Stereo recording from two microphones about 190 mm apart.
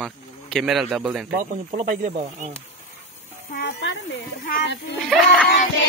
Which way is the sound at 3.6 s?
70° left (ahead or behind).